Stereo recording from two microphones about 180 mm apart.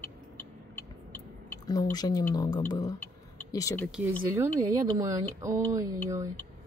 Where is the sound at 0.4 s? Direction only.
10° left (ahead or behind).